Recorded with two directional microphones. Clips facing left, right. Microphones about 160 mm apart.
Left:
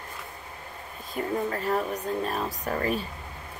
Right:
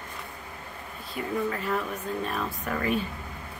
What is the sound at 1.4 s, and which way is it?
A woman's voice, 40° left (ahead or behind).